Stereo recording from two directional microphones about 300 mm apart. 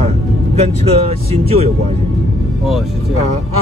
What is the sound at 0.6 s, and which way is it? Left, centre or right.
Speech, centre.